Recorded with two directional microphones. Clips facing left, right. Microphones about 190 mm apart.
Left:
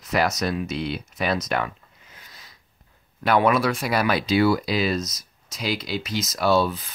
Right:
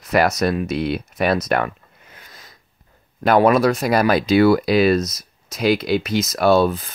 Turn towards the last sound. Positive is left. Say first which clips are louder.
# right 5 dB
turn(degrees=-50)  # may be behind; listen again after turning